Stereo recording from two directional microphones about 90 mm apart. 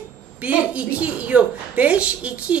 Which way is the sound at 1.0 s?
15° right (ahead or behind).